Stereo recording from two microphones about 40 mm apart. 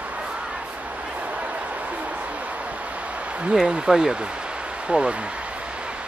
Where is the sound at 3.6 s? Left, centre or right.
Centre.